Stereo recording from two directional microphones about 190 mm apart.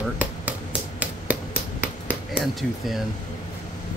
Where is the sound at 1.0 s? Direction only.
10° right (ahead or behind).